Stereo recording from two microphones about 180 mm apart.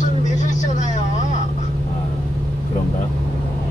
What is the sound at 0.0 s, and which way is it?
Vehicle, 45° left (ahead or behind).